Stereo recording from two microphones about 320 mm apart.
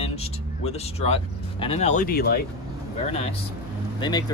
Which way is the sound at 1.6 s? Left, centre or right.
Centre.